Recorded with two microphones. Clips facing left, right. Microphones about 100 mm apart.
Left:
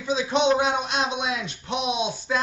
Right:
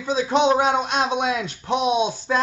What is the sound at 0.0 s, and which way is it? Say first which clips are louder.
A man's voice: right 3 dB; 45° right (ahead or behind).